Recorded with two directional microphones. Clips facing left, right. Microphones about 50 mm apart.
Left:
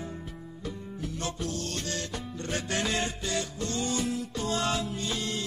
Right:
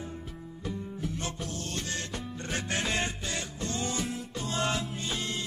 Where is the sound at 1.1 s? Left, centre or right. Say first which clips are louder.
Left 3 dB; right.